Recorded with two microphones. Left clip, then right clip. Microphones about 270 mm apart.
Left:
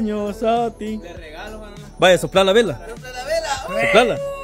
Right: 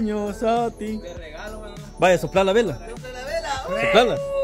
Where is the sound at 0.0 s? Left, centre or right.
Centre.